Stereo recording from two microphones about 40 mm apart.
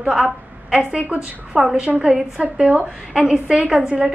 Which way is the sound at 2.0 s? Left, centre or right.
Right.